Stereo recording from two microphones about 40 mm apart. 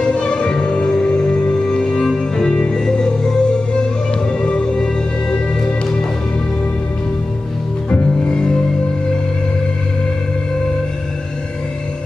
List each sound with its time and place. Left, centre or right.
0.0 s music: left
2.0 s music: centre
8.3 s music: left